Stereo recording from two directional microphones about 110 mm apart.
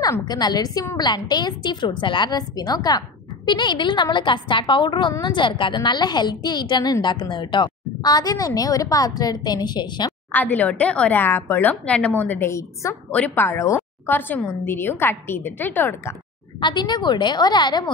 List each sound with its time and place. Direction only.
0.3 s a woman's voice: 40° left (ahead or behind)
10.3 s a woman's voice: 15° left (ahead or behind)
13.1 s a woman's voice: 15° left (ahead or behind)
16.6 s a woman's voice: 40° left (ahead or behind)